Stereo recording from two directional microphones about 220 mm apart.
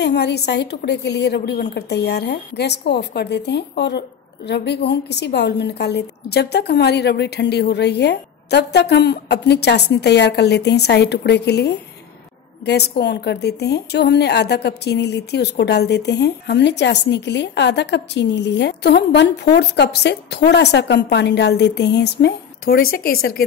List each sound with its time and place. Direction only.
0.0 s a woman's voice: 50° left (ahead or behind)